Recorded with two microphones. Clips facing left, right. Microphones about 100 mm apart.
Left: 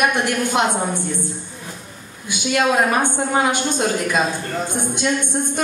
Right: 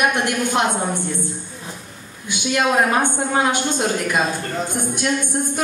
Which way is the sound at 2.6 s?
20° right (ahead or behind).